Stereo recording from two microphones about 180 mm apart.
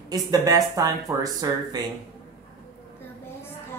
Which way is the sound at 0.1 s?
20° right (ahead or behind).